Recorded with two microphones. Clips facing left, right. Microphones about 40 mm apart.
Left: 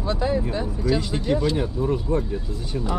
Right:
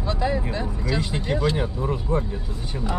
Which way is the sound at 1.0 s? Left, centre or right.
Right.